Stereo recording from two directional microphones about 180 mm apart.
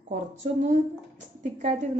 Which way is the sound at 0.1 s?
45° right (ahead or behind).